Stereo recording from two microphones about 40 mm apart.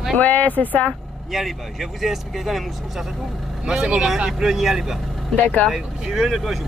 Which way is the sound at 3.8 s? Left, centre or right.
Centre.